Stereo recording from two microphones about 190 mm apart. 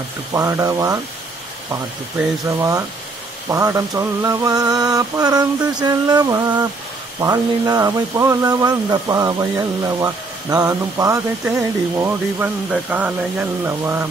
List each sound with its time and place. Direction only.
0.3 s speech: 15° right (ahead or behind)
3.4 s mantra: 15° right (ahead or behind)
7.2 s speech: 20° right (ahead or behind)